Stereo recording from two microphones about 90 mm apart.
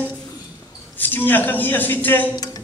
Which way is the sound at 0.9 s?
20° left (ahead or behind).